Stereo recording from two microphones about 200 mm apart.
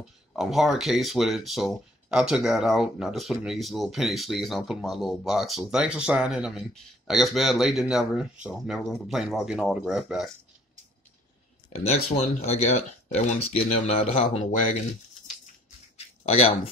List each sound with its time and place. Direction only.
0.4 s speech: centre (ahead or behind)
11.7 s speech: 30° left (ahead or behind)
16.3 s speech: 30° left (ahead or behind)